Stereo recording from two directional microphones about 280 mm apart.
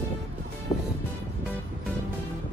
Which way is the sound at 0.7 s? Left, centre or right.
Left.